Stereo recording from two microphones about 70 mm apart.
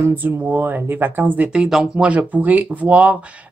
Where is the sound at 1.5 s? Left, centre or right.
Centre.